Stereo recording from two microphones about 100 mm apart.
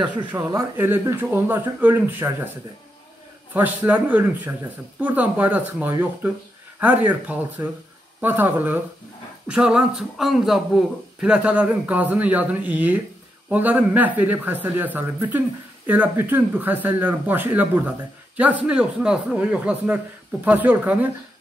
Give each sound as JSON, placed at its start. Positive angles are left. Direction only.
{"t": 0.3, "sound": "speech", "side_deg": -25}
{"t": 3.5, "sound": "a man's voice", "side_deg": -20}
{"t": 9.5, "sound": "a man's voice", "side_deg": -10}